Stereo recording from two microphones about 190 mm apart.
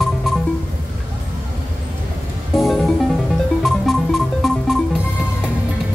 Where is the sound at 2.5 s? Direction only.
Centre (ahead or behind).